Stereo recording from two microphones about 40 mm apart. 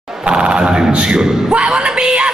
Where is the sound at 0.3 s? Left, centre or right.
Right.